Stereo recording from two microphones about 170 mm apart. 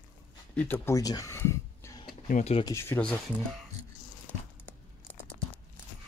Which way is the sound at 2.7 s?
15° left (ahead or behind).